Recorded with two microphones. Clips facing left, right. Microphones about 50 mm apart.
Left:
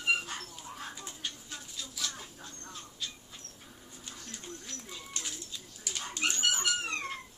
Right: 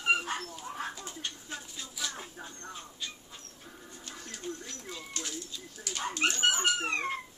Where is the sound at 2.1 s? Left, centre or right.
Right.